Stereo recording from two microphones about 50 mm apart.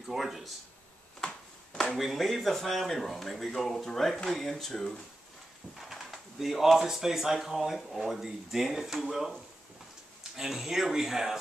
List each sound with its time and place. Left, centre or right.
0.1 s speech: centre
1.2 s a sound: centre
2.0 s speech: centre
5.8 s speech: centre
10.3 s speech: centre